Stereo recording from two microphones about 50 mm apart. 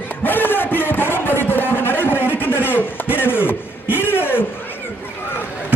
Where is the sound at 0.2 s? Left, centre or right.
Left.